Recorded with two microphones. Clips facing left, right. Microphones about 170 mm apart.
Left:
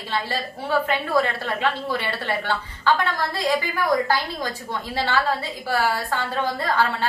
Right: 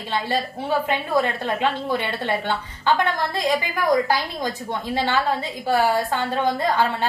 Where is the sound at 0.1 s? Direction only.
20° right (ahead or behind).